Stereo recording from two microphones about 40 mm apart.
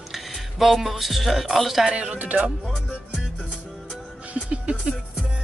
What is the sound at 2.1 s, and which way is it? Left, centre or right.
Music, right.